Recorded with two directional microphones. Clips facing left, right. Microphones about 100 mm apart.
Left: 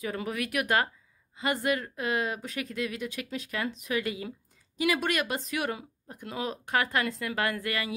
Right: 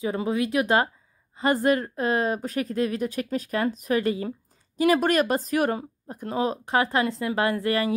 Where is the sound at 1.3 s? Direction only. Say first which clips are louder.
Right 7 dB; 35° right (ahead or behind).